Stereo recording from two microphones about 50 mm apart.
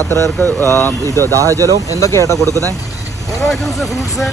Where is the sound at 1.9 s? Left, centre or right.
Left.